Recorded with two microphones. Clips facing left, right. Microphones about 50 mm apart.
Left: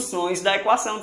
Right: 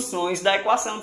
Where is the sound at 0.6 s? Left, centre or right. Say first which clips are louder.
Left 2 dB; centre.